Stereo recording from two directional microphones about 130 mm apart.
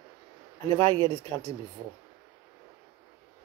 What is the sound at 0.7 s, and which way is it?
Speech, 50° right (ahead or behind).